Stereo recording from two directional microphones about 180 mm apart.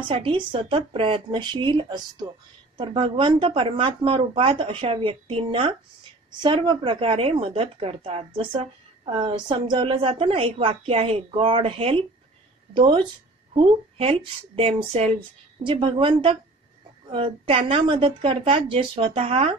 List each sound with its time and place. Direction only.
0.1 s a woman's voice: 30° right (ahead or behind)